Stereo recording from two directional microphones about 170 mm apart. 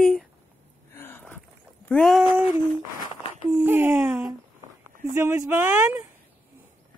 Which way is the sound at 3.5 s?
10° right (ahead or behind).